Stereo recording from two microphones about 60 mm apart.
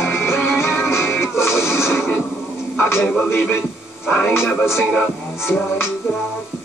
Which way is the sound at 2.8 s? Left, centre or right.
Left.